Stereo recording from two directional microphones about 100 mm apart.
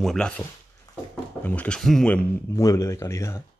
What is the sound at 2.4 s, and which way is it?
Speech, 30° left (ahead or behind).